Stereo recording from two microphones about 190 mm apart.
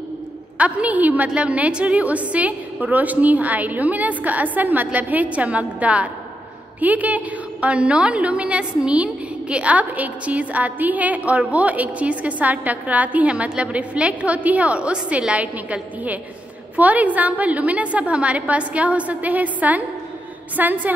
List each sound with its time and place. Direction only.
0.6 s a woman's voice: 5° right (ahead or behind)